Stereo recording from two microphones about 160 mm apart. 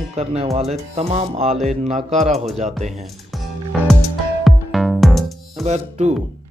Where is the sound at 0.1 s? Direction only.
40° right (ahead or behind).